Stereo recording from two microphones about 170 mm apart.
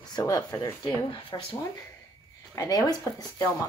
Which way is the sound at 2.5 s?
20° left (ahead or behind).